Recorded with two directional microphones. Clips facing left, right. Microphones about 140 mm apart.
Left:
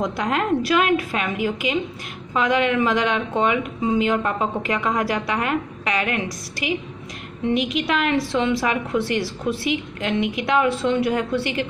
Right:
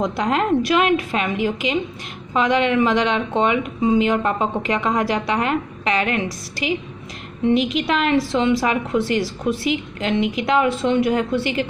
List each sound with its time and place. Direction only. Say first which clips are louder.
0.0 s speech: right 3 dB; 25° right (ahead or behind)